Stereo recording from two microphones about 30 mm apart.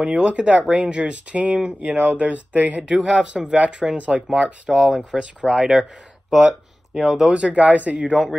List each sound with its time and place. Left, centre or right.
0.2 s speech: right
1.1 s speech: right
2.9 s speech: right
3.7 s speech: right
4.6 s speech: centre
5.1 s speech: right
5.5 s speech: right
6.3 s a sound: right
7.2 s speech: right